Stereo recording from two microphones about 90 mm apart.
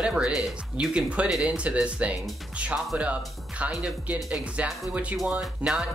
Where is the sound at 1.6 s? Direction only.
15° right (ahead or behind).